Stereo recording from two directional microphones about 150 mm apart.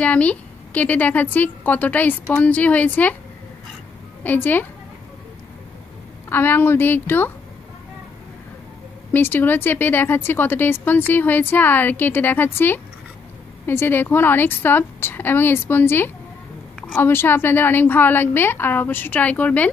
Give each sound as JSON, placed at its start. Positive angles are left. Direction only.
{"t": 0.0, "sound": "a woman's voice", "side_deg": 10}
{"t": 4.2, "sound": "a woman's voice", "side_deg": 10}
{"t": 6.2, "sound": "a woman's voice", "side_deg": 15}
{"t": 9.1, "sound": "a woman's voice", "side_deg": 15}